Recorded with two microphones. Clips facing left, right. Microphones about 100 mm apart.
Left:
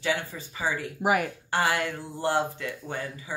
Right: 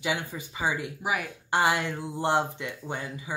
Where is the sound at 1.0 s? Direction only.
50° left (ahead or behind).